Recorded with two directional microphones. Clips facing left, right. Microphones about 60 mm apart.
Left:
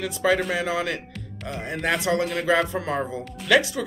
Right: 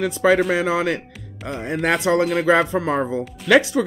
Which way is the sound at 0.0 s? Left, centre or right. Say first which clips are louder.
Right 6 dB; right.